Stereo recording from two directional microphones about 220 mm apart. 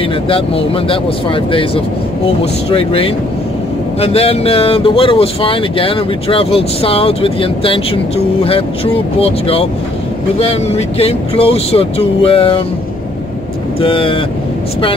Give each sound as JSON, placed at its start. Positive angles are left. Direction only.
{"t": 0.3, "sound": "speech", "side_deg": 25}
{"t": 13.7, "sound": "speech", "side_deg": 25}